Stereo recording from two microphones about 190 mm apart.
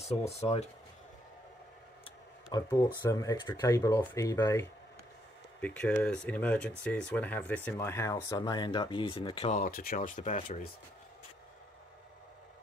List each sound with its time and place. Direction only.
0.3 s speech: 35° left (ahead or behind)
2.5 s speech: 20° left (ahead or behind)
9.6 s speech: 50° left (ahead or behind)